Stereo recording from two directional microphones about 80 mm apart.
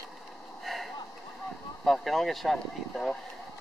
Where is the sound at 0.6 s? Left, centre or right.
Centre.